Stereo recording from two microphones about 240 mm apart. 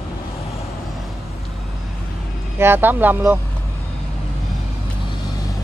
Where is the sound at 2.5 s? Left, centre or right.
Centre.